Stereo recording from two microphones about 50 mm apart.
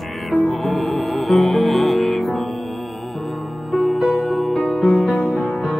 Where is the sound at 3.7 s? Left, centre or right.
Centre.